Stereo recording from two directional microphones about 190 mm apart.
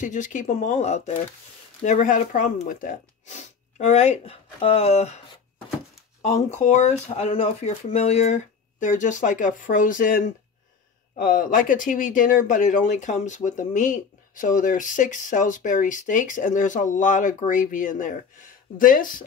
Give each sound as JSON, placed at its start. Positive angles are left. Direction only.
{"t": 0.0, "sound": "speech", "side_deg": 40}
{"t": 6.2, "sound": "speech", "side_deg": 35}